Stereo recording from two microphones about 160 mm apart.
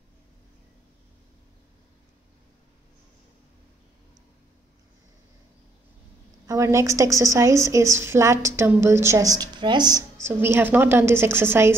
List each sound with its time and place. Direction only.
6.4 s a woman's voice: 20° right (ahead or behind)
10.2 s a woman's voice: 15° right (ahead or behind)